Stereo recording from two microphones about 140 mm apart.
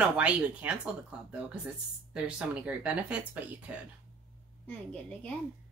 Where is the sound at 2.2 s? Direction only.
10° right (ahead or behind).